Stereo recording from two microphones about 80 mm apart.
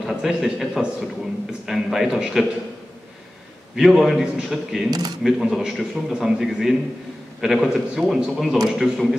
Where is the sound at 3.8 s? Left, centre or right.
Centre.